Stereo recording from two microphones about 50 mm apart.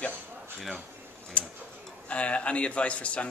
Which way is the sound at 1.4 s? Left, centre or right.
Left.